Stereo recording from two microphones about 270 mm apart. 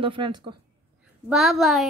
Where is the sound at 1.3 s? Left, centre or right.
Centre.